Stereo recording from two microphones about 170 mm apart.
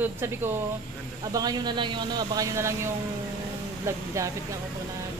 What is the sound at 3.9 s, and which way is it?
Speech, 15° right (ahead or behind).